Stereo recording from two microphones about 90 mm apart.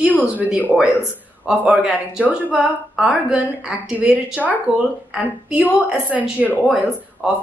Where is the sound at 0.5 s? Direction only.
20° right (ahead or behind).